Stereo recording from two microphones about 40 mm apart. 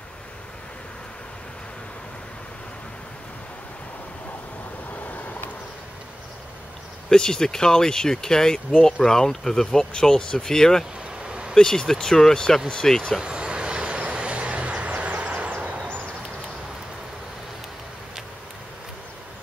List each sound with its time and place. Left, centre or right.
5.1 s vehicle: left
7.1 s speech: centre
11.2 s vehicle: right
11.5 s speech: centre
13.2 s vehicle: right